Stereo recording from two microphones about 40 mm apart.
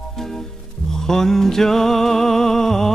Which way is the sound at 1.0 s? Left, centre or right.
Centre.